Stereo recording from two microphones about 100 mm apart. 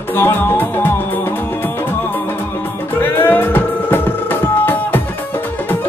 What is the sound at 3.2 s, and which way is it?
Music, 20° left (ahead or behind).